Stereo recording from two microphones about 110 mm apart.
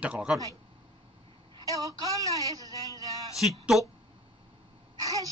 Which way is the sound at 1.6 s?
30° right (ahead or behind).